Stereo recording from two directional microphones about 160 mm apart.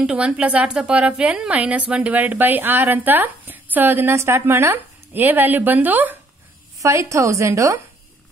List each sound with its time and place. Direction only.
0.0 s a woman's voice: 5° right (ahead or behind)